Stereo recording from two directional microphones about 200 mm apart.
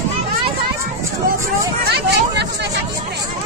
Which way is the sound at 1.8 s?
55° right (ahead or behind).